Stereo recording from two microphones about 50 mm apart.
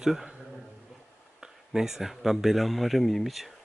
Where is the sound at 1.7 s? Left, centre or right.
Centre.